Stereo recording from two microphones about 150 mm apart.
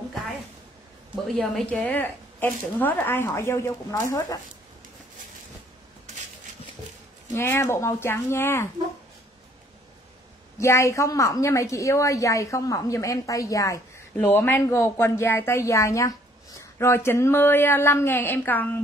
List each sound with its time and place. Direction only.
1.2 s speech: centre (ahead or behind); by 4.4 s 25° left (ahead or behind)
7.3 s speech: 15° left (ahead or behind)
10.6 s a woman's voice: 20° left (ahead or behind)